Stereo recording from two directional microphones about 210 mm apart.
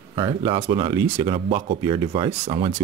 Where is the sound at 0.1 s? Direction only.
20° right (ahead or behind).